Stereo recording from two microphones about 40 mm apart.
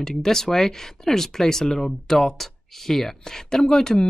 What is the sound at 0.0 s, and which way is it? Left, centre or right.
Speech, centre.